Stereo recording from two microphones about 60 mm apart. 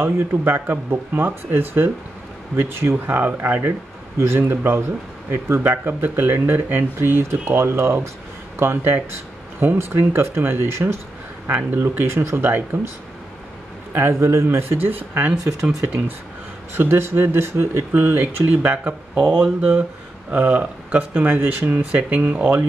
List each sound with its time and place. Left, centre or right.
0.0 s speech: right
13.9 s speech: right
15.6 s speech: right
16.7 s speech: right